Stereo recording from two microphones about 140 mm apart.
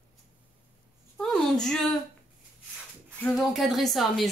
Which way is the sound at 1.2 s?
5° left (ahead or behind).